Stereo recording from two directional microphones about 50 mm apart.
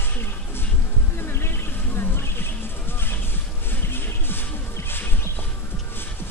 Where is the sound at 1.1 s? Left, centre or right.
Left.